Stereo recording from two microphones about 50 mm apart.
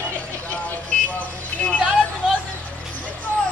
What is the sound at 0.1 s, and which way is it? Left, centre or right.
Vehicle, left.